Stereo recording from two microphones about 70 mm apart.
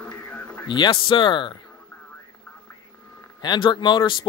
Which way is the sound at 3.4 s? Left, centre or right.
Left.